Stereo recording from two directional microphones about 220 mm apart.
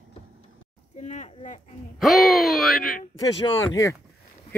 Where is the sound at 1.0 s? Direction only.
35° left (ahead or behind).